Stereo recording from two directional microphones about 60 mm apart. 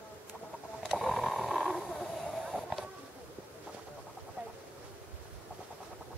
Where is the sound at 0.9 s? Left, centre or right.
Centre.